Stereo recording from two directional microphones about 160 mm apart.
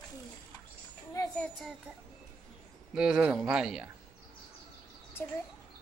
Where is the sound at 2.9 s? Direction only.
5° right (ahead or behind).